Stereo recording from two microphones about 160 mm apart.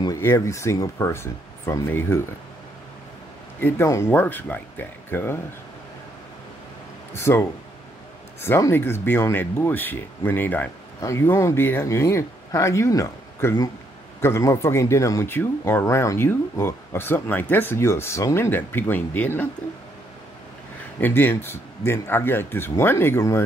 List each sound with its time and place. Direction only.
0.0 s speech: 20° left (ahead or behind)
3.6 s speech: 15° left (ahead or behind)
7.2 s speech: 15° left (ahead or behind)
21.0 s speech: 15° left (ahead or behind)